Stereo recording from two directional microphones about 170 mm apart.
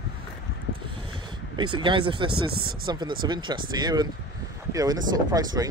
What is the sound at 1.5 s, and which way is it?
Speech, 30° right (ahead or behind).